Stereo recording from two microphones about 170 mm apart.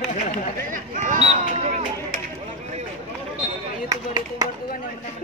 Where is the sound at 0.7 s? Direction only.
45° right (ahead or behind).